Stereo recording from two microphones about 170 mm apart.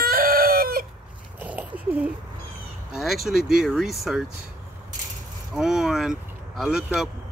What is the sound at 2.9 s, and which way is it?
Speech, centre (ahead or behind).